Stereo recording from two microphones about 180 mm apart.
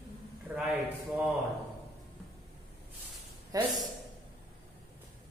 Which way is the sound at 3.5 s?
20° right (ahead or behind).